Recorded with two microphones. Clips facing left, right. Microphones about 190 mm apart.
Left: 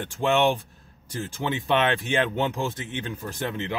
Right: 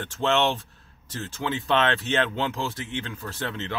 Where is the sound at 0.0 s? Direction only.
15° left (ahead or behind).